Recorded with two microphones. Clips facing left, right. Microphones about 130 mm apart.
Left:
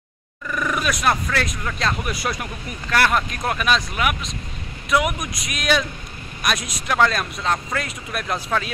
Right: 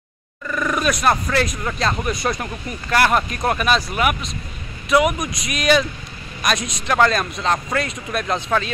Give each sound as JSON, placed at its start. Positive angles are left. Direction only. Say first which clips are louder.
{"t": 0.5, "sound": "speech", "louder": "right 3 dB", "side_deg": 5}